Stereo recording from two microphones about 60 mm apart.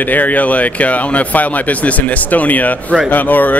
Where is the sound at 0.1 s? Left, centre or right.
Left.